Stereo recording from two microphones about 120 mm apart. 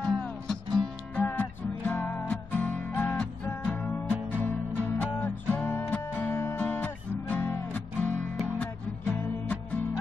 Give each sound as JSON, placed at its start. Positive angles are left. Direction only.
{"t": 0.0, "sound": "music", "side_deg": 5}